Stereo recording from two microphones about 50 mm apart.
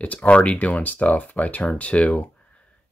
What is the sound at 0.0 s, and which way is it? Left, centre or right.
Speech, left.